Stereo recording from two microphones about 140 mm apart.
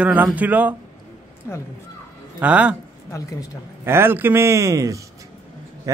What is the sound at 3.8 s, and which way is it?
A man's voice, 15° right (ahead or behind).